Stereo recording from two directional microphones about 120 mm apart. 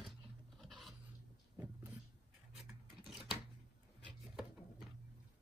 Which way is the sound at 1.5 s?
15° right (ahead or behind).